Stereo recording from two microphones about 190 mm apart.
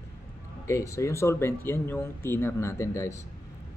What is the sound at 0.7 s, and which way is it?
Speech, 15° left (ahead or behind).